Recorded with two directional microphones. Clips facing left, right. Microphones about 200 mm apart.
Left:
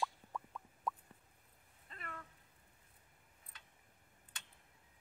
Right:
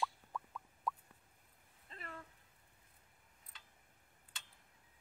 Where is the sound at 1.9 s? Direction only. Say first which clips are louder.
Even; 30° right (ahead or behind).